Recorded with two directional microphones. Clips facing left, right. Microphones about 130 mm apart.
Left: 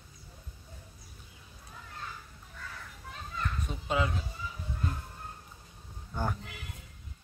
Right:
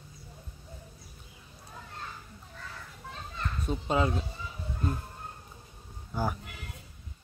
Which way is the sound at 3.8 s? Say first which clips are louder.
Right 3 dB; 35° right (ahead or behind).